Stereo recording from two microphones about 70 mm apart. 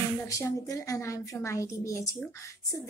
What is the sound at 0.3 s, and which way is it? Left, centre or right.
A woman's voice, left.